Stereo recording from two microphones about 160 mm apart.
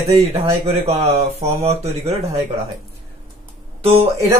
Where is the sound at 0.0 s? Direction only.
40° right (ahead or behind).